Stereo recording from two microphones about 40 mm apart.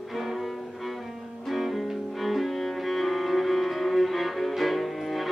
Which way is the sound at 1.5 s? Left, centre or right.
Centre.